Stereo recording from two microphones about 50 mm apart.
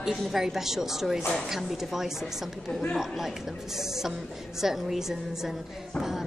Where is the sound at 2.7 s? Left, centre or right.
Centre.